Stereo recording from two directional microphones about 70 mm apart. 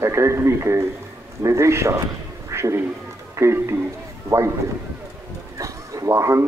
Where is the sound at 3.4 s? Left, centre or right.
Right.